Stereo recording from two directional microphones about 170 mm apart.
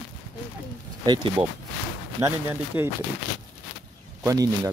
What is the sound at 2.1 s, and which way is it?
Speech, 15° right (ahead or behind).